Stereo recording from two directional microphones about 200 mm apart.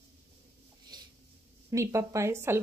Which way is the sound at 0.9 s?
20° right (ahead or behind).